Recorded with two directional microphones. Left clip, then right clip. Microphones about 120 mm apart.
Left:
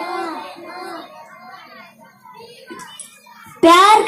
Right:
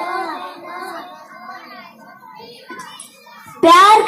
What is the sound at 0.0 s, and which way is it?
Child singing, 50° left (ahead or behind).